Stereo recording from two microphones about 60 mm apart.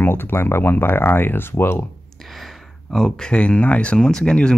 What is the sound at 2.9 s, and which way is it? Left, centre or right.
Speech, centre.